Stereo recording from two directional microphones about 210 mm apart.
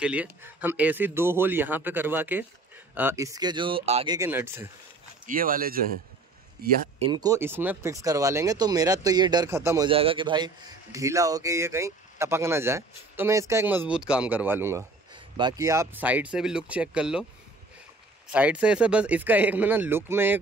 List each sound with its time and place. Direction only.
0.0 s a man's voice: 5° right (ahead or behind); by 4.1 s 25° right (ahead or behind)
4.1 s a man's voice: 10° right (ahead or behind)
5.2 s speech: 40° right (ahead or behind)
7.0 s a man's voice: 20° right (ahead or behind)
9.8 s a man's voice: 25° right (ahead or behind); by 17.3 s 5° right (ahead or behind)
18.3 s a man's voice: 5° right (ahead or behind)